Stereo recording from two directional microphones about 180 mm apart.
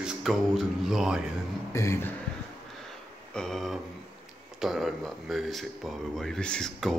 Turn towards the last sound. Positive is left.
turn(degrees=5)  # may be behind; listen again after turning